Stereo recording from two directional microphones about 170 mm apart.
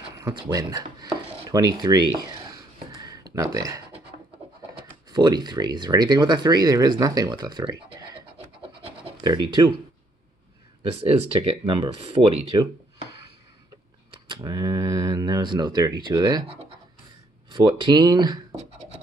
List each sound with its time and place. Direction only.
0.1 s speech: 25° right (ahead or behind)
1.5 s a sound: 25° right (ahead or behind)
4.7 s speech: 25° right (ahead or behind)
9.2 s speech: 25° right (ahead or behind)
10.8 s speech: 35° right (ahead or behind)
14.1 s speech: 25° right (ahead or behind)